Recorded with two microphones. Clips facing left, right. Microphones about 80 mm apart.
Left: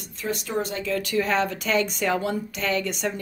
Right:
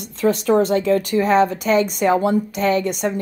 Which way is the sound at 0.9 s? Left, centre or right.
Right.